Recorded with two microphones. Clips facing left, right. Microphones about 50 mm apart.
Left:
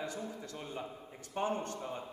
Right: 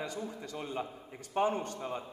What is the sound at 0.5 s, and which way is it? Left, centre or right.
Speech, right.